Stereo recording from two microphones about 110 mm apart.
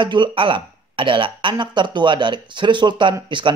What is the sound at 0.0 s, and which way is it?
Speech, 45° right (ahead or behind).